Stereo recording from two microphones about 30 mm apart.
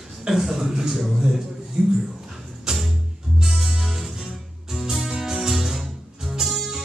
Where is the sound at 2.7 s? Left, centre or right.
Centre.